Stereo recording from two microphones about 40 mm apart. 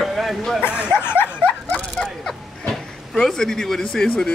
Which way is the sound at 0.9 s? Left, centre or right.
Left.